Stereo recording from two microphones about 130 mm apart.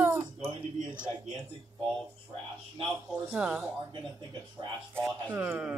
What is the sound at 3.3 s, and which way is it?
Speech, 10° right (ahead or behind).